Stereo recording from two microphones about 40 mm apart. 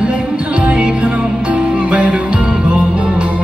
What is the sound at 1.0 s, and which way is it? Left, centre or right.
Music, right.